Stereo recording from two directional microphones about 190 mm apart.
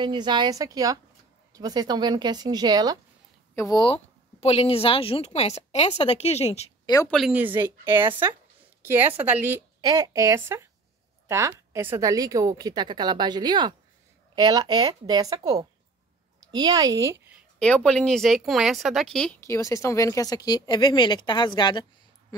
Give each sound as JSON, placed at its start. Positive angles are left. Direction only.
{"t": 0.0, "sound": "a woman's voice", "side_deg": -25}
{"t": 3.5, "sound": "speech", "side_deg": 20}
{"t": 7.1, "sound": "a woman's voice", "side_deg": 0}
{"t": 17.6, "sound": "speech", "side_deg": 5}